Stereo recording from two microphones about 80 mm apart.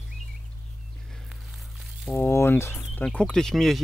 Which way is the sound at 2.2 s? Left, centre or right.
Left.